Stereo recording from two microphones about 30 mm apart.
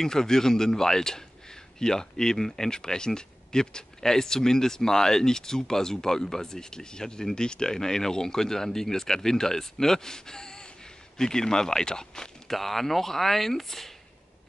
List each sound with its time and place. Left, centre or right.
0.0 s speech: centre
12.4 s speech: centre